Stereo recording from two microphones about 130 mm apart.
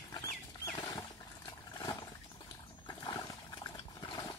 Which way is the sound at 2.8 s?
30° left (ahead or behind).